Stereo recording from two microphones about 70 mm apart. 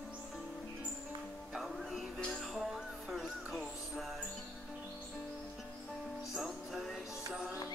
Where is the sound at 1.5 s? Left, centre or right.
Centre.